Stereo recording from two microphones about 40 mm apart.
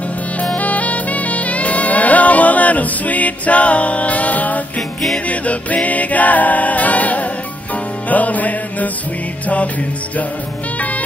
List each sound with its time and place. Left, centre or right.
0.6 s music: left